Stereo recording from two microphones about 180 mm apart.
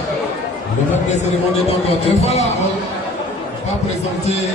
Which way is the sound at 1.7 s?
35° left (ahead or behind).